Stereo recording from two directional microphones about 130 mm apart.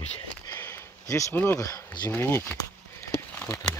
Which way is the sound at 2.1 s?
15° left (ahead or behind).